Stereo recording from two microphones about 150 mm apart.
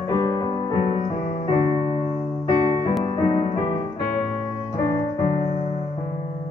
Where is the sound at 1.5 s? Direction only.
30° left (ahead or behind).